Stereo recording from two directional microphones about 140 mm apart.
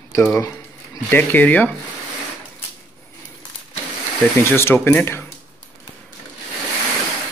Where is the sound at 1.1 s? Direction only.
15° left (ahead or behind).